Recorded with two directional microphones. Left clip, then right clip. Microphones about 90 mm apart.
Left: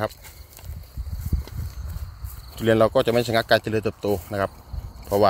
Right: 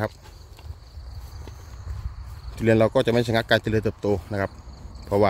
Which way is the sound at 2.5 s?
25° right (ahead or behind).